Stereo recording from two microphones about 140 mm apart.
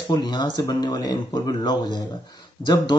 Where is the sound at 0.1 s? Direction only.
30° left (ahead or behind).